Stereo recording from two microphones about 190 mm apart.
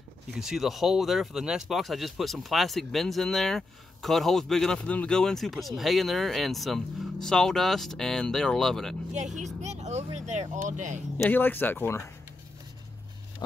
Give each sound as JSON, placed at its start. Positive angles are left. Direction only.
{"t": 0.4, "sound": "speech", "side_deg": 0}
{"t": 9.4, "sound": "speech", "side_deg": -35}
{"t": 11.2, "sound": "speech", "side_deg": 10}